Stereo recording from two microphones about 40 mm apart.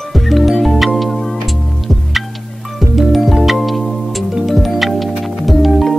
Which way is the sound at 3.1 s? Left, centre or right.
Centre.